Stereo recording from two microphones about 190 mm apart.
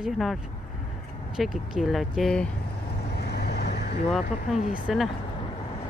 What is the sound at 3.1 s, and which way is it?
Vehicle, 55° left (ahead or behind).